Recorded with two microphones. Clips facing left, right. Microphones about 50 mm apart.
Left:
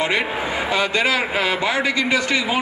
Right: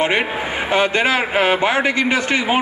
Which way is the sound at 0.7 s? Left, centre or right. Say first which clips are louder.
Right 4 dB; right.